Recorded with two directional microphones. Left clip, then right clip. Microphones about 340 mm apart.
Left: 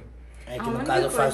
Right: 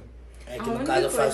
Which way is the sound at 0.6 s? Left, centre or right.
Centre.